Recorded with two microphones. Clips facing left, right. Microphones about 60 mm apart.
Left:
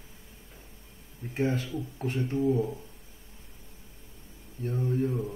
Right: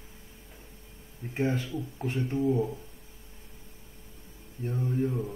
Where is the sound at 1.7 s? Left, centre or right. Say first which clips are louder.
Even; centre.